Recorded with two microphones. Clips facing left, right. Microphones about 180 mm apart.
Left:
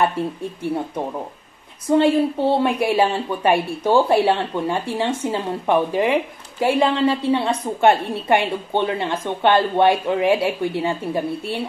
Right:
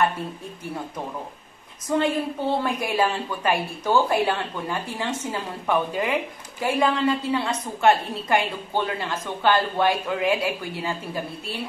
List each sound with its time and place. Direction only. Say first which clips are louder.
1.9 s a woman's voice: left 7 dB; 30° left (ahead or behind)